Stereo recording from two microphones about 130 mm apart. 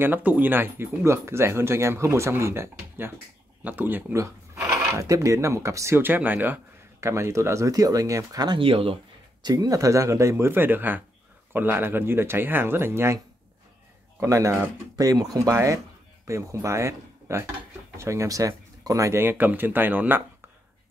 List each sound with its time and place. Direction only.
0.0 s speech: 15° right (ahead or behind); by 8.9 s 45° right (ahead or behind)
9.4 s speech: 30° right (ahead or behind)
14.2 s speech: 25° right (ahead or behind)